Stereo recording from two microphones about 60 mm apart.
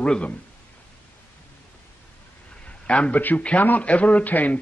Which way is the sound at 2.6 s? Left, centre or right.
Left.